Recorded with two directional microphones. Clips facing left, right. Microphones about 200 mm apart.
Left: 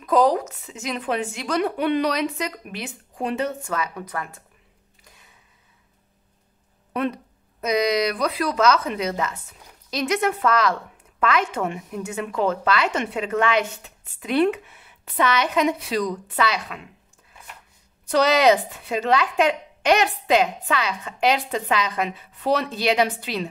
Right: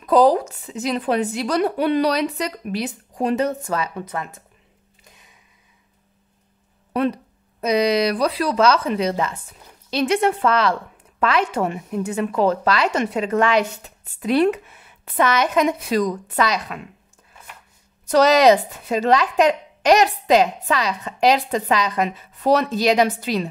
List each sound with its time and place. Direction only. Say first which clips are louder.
0.0 s speech: right 4 dB; 35° right (ahead or behind)
6.9 s a sound: right 4 dB; 35° right (ahead or behind)
7.6 s speech: right 3 dB; 30° right (ahead or behind)
18.0 s speech: right 4 dB; 40° right (ahead or behind)